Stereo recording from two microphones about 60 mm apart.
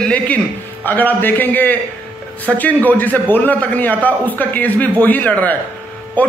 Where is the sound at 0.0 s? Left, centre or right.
Left.